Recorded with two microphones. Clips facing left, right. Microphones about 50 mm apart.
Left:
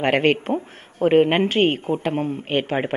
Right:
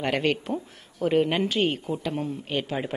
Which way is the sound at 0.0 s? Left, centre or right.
Left.